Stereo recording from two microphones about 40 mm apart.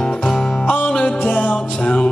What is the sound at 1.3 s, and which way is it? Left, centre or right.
Music, left.